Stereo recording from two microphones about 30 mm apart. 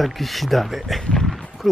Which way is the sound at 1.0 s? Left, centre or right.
Centre.